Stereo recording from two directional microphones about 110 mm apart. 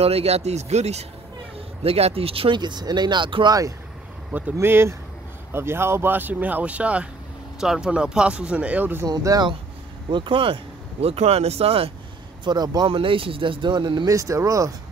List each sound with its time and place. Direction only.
0.0 s speech: 70° right (ahead or behind); by 1.0 s 85° right
1.8 s speech: 65° right (ahead or behind); by 3.5 s 45° right (ahead or behind)
4.3 s speech: 15° right (ahead or behind)
9.0 s speech: 35° right (ahead or behind)
10.1 s speech: 50° right (ahead or behind)
12.4 s speech: 40° right (ahead or behind)
12.9 s speech: 55° right (ahead or behind)
14.0 s speech: 30° right (ahead or behind)